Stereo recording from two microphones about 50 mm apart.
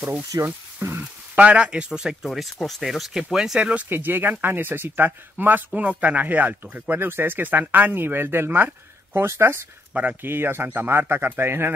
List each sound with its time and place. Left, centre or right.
0.7 s sizzle: right
1.0 s speech: right
2.2 s speech: centre
3.9 s speech: right
7.0 s speech: right